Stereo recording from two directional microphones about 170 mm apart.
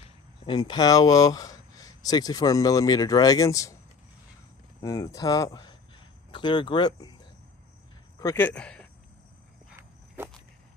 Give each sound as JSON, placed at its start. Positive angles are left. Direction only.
{"t": 0.0, "sound": "speech", "side_deg": 30}
{"t": 4.8, "sound": "speech", "side_deg": 20}
{"t": 8.2, "sound": "speech", "side_deg": 15}
{"t": 9.8, "sound": "walk", "side_deg": -15}